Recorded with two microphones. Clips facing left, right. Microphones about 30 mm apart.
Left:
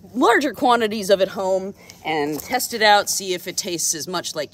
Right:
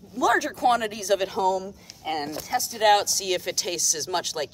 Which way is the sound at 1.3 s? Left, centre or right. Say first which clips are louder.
Left 2 dB; centre.